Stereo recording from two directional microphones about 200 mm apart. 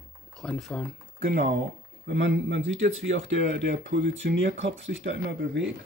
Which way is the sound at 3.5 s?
60° right (ahead or behind).